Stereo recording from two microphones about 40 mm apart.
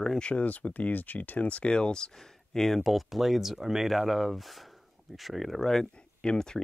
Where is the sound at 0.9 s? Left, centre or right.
Left.